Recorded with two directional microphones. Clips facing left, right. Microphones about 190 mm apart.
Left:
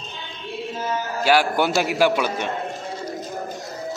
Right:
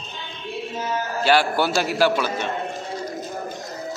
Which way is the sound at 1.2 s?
15° left (ahead or behind).